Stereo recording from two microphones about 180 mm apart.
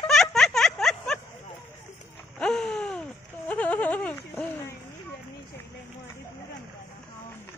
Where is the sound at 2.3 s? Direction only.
5° left (ahead or behind).